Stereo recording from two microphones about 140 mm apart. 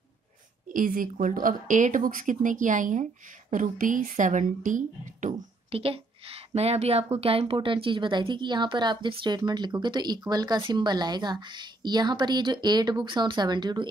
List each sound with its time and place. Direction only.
0.7 s speech: 80° right; by 5.3 s 65° right (ahead or behind)
5.7 s speech: 45° right (ahead or behind)